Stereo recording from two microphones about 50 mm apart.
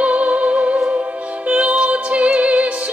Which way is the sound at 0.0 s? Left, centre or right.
Right.